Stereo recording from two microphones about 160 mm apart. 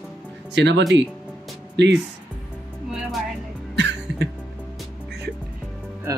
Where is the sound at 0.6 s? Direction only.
90° right.